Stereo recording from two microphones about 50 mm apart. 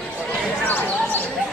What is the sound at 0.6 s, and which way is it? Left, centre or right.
Basketball bounce, left.